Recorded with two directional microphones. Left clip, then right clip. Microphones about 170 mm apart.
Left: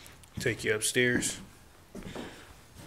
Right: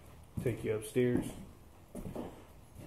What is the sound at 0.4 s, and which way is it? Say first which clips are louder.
Speech: left 6 dB; 10° left (ahead or behind).